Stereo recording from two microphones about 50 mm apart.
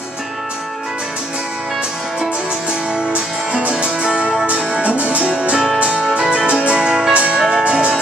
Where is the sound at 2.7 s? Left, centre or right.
Centre.